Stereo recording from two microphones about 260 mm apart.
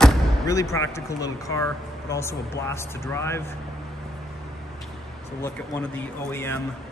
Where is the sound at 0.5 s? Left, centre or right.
Centre.